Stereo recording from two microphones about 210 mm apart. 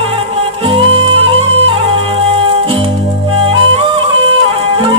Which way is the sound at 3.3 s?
25° right (ahead or behind).